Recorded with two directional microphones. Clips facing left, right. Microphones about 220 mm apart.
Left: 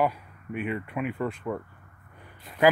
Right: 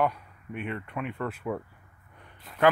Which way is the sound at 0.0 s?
5° left (ahead or behind).